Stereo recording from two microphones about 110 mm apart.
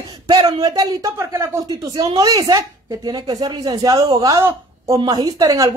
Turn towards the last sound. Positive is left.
turn(degrees=-35)  # may be behind; listen again after turning